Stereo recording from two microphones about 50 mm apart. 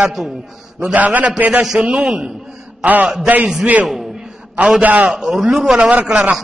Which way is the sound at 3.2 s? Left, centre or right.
Right.